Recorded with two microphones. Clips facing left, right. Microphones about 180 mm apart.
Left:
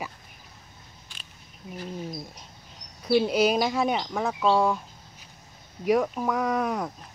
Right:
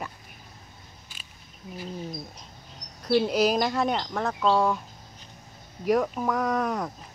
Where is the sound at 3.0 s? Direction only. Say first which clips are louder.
Left 1 dB; centre (ahead or behind).